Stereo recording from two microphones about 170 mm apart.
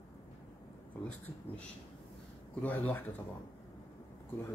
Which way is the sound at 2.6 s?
10° left (ahead or behind).